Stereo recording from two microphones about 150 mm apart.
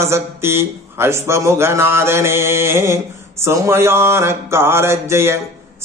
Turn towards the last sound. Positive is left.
turn(degrees=-15)  # may be behind; listen again after turning